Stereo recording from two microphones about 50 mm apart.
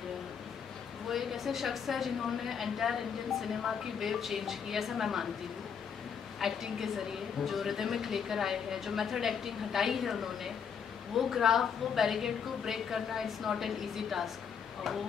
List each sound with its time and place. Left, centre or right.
1.0 s a woman's voice: centre
6.4 s a woman's voice: centre